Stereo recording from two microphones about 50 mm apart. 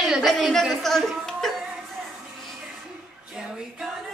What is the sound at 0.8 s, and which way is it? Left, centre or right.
Speech, centre.